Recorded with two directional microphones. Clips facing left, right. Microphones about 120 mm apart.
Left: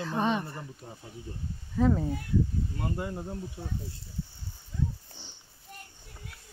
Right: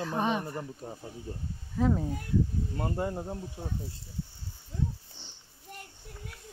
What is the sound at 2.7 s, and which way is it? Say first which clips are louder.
Speech: right 4 dB; 35° right (ahead or behind).